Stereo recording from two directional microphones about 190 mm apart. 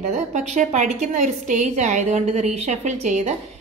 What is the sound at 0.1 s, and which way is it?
A woman's voice, 40° right (ahead or behind).